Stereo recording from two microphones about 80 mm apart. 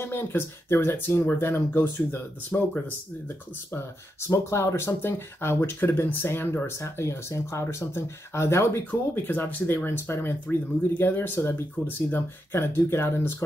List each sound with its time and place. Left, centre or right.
0.0 s speech: left
3.7 s speech: left
9.3 s speech: left